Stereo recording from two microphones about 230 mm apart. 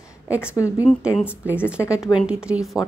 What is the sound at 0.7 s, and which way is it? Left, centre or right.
Speech, centre.